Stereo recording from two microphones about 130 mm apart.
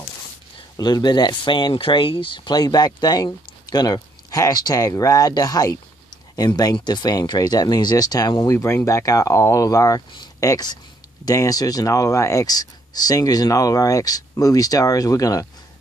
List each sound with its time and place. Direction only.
0.7 s speech: 30° left (ahead or behind)
8.5 s speech: 20° left (ahead or behind)